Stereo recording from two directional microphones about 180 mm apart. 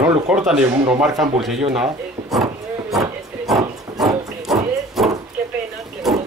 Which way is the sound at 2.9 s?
Centre (ahead or behind).